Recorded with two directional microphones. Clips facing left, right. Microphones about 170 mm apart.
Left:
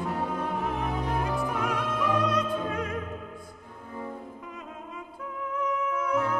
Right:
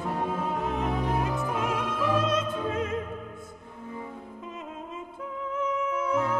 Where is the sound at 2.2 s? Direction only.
25° right (ahead or behind).